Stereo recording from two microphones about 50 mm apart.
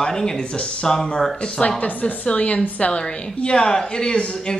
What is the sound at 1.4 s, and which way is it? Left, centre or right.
Speech, left.